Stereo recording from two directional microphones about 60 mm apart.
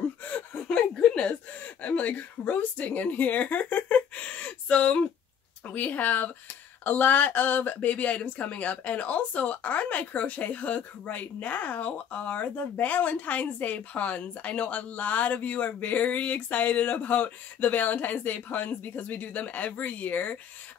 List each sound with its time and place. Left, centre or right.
0.2 s a sound: left
0.7 s chuckle: centre
1.8 s a woman's voice: left